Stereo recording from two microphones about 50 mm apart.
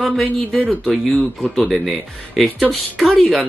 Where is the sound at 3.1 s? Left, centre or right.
Centre.